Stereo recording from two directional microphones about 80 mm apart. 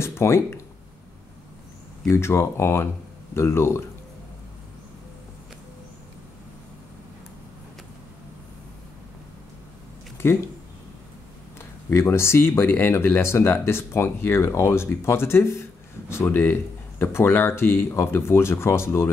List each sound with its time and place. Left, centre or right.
0.0 s a sound: left
2.0 s speech: left
10.2 s speech: left
11.9 s speech: left